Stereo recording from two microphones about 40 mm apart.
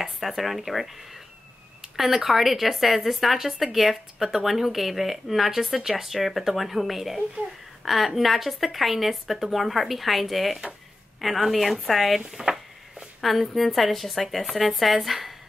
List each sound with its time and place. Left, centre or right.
0.0 s speech: centre
2.0 s a woman's voice: centre